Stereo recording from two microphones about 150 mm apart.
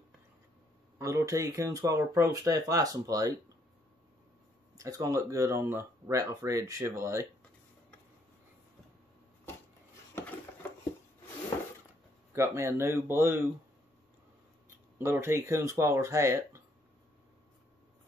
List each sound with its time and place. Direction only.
0.9 s speech: 20° right (ahead or behind)
4.7 s speech: 20° right (ahead or behind)
12.3 s speech: 20° right (ahead or behind)
15.0 s speech: 15° right (ahead or behind)